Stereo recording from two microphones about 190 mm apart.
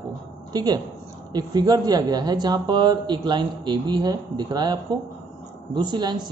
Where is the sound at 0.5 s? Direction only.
20° right (ahead or behind).